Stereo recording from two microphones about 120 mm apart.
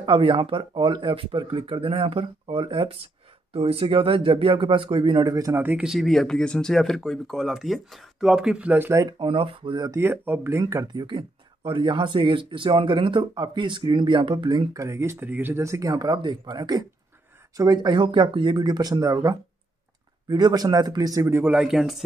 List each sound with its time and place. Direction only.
0.0 s speech: 45° right (ahead or behind)
5.6 s speech: 10° right (ahead or behind)
9.2 s speech: 45° right (ahead or behind)
9.8 s speech: 20° right (ahead or behind); by 14.7 s 45° right (ahead or behind)
14.7 s speech: 25° right (ahead or behind); by 22.0 s 5° right (ahead or behind)